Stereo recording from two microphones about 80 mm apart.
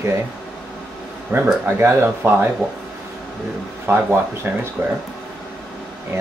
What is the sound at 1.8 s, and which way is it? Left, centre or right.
Speech, right.